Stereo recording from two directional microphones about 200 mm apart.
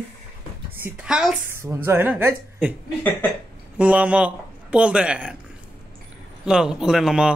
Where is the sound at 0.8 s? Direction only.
5° right (ahead or behind).